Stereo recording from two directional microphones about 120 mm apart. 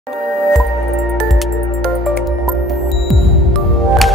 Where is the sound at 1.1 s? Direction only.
Centre (ahead or behind).